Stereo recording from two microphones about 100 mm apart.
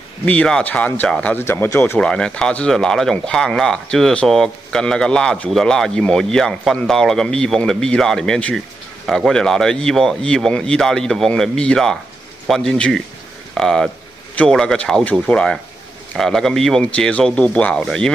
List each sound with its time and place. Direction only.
0.2 s speech: 10° left (ahead or behind)
1.4 s speech: 25° left (ahead or behind)
2.0 s speech: 10° left (ahead or behind)